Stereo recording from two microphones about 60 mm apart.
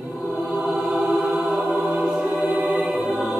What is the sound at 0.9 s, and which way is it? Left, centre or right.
Choir, centre.